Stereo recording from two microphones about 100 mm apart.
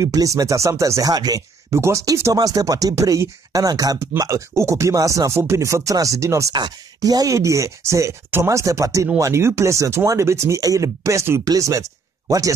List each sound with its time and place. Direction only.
0.0 s speech: 35° right (ahead or behind)
6.5 s speech: 40° right (ahead or behind)